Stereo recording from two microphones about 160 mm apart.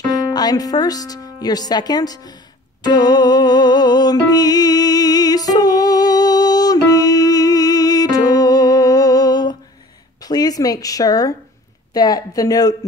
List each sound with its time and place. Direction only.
0.0 s speech: 25° left (ahead or behind)
2.8 s music: 25° left (ahead or behind)
10.2 s speech: 25° left (ahead or behind)